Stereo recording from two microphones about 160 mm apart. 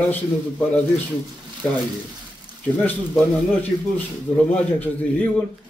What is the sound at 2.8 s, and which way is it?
A man's voice, 10° left (ahead or behind).